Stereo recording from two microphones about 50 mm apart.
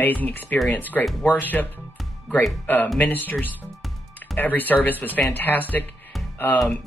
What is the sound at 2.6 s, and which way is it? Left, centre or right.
Speech, left.